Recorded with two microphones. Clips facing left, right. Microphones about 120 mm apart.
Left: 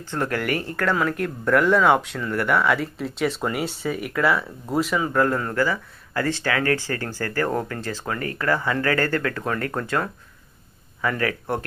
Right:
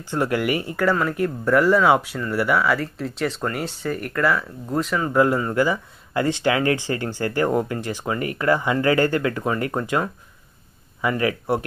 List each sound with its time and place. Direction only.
0.1 s speech: 10° right (ahead or behind); by 5.1 s 5° left (ahead or behind)
5.1 s speech: 10° right (ahead or behind)